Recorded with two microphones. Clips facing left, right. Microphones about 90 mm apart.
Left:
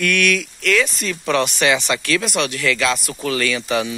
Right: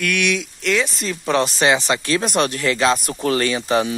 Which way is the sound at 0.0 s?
15° right (ahead or behind).